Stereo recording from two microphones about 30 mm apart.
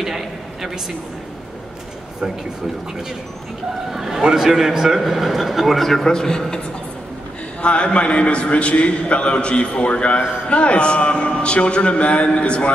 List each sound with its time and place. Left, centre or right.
0.0 s a sound: centre
3.9 s a man's voice: centre
5.0 s a man's voice: centre
6.0 s a man's voice: left
7.6 s a man's voice: left